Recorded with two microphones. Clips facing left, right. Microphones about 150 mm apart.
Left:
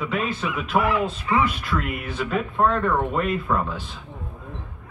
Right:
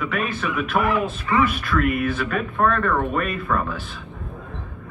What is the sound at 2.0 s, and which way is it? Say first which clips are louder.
Speech: right 3 dB; 20° left (ahead or behind).